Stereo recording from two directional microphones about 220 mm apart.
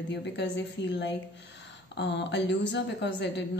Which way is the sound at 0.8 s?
50° left (ahead or behind).